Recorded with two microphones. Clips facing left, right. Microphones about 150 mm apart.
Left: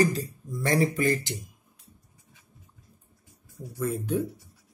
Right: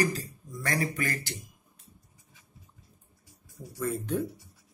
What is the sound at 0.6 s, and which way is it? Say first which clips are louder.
Speech: left 6 dB; 25° left (ahead or behind).